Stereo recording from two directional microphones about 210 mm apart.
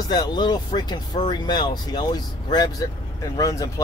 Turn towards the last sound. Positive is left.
turn(degrees=15)  # may be behind; listen again after turning